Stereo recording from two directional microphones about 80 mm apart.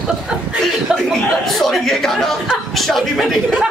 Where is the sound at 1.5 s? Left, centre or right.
Centre.